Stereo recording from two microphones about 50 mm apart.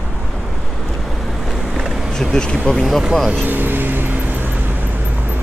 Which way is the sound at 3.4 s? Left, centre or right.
Right.